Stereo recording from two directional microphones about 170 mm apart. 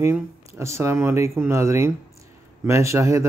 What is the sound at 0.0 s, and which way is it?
Speech, 15° right (ahead or behind).